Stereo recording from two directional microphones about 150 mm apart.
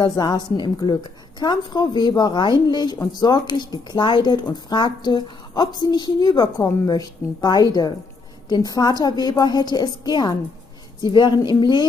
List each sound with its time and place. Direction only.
0.0 s speech: 25° left (ahead or behind)